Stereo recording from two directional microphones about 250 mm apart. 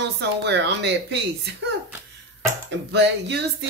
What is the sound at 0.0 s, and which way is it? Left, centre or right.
Female singing, right.